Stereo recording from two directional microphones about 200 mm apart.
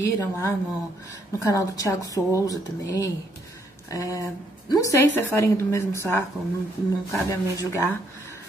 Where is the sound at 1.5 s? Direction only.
15° left (ahead or behind).